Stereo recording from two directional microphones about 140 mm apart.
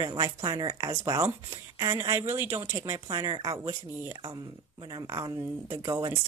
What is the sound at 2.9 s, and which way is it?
Speech, 30° right (ahead or behind).